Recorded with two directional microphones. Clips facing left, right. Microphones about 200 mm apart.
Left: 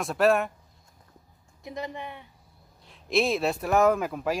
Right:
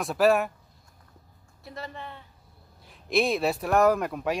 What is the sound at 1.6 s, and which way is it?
Speech, 15° left (ahead or behind).